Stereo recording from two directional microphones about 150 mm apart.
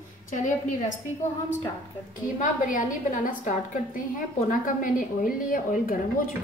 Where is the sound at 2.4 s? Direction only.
60° left (ahead or behind).